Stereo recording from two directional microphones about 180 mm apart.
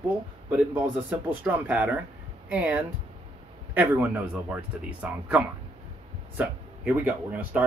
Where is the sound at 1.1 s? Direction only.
10° right (ahead or behind).